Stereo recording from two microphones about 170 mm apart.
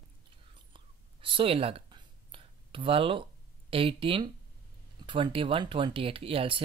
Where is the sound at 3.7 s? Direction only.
30° right (ahead or behind).